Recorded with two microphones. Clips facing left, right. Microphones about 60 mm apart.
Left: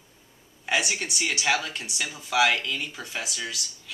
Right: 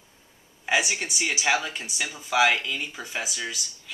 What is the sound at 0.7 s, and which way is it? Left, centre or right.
Speech, centre.